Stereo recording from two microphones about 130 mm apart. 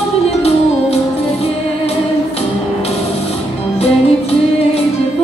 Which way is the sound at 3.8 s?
50° left (ahead or behind).